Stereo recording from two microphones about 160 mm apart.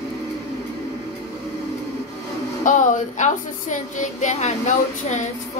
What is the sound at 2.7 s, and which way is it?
A woman's voice, 50° left (ahead or behind).